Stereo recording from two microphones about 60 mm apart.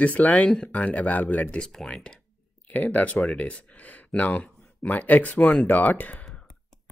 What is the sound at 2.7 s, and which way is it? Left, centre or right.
Speech, left.